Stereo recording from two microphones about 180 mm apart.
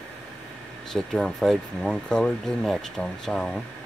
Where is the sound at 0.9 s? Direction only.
5° left (ahead or behind).